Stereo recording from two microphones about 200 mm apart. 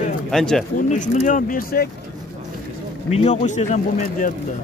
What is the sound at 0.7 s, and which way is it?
Speech, 40° left (ahead or behind).